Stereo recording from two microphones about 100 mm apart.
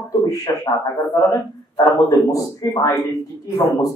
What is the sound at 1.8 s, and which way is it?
A man's voice, 35° left (ahead or behind).